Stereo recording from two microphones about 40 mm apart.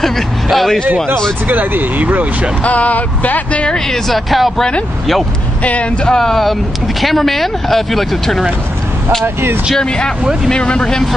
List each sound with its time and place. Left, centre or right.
0.0 s a man's voice: centre
1.5 s speech: right
2.6 s speech: left
3.6 s speech: centre
4.1 s speech: centre
5.6 s speech: left
6.0 s speech: centre
9.2 s speech: right
9.8 s speech: left